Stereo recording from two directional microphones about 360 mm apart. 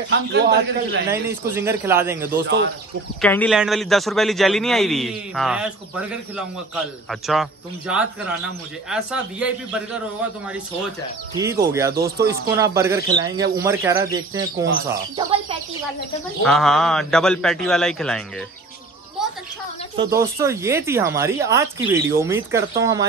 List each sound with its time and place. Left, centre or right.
0.1 s a man's voice: right
1.1 s a man's voice: centre
11.3 s speech: centre
16.4 s a man's voice: centre
20.2 s speech: centre